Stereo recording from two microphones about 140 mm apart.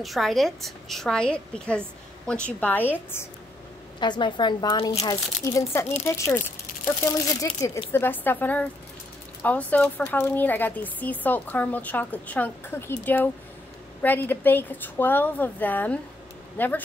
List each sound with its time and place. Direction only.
0.0 s a woman's voice: centre (ahead or behind); by 3.3 s 15° left (ahead or behind)
4.0 s a woman's voice: 35° left (ahead or behind); by 6.4 s 15° left (ahead or behind)
6.7 s a sound: 90° left
7.1 s a woman's voice: 25° left (ahead or behind)